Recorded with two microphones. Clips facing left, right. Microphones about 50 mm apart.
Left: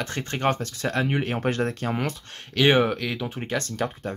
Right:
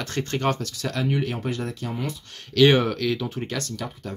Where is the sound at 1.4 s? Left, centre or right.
Left.